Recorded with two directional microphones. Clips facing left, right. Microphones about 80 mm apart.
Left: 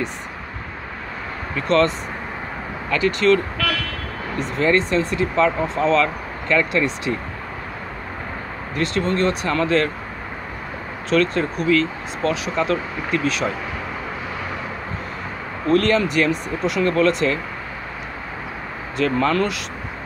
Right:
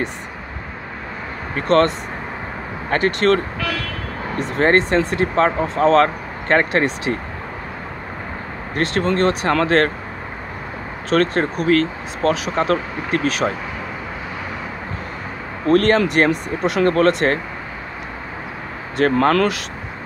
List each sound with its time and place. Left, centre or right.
1.7 s speech: right
4.4 s speech: right
8.7 s speech: right
11.1 s speech: right
15.7 s speech: right
18.9 s speech: right